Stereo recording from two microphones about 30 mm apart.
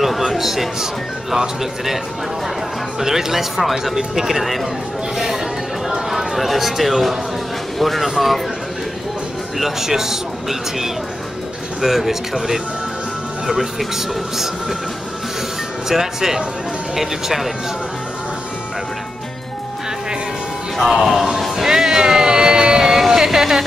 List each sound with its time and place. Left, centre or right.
0.0 s a sound: centre
1.3 s speech: centre
3.0 s speech: centre
9.6 s speech: centre
15.9 s speech: centre
20.8 s speech: centre
21.6 s music: centre
22.0 s a sound: right
22.8 s a sound: centre